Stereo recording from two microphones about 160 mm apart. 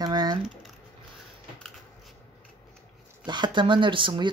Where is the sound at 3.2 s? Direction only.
30° right (ahead or behind).